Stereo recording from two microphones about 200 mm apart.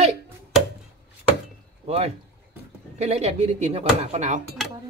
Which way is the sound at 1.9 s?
35° right (ahead or behind).